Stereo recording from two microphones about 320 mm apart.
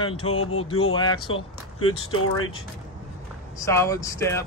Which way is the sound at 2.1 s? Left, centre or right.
Left.